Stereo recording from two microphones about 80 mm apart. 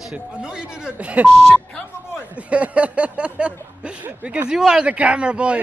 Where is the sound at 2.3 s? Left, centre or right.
Centre.